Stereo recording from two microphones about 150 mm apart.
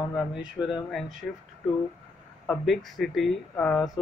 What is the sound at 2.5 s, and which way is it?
Speech, centre (ahead or behind).